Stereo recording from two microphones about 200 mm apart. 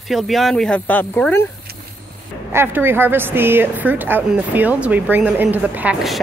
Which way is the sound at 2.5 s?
10° right (ahead or behind).